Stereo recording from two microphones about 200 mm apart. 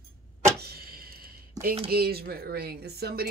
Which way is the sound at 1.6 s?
20° right (ahead or behind).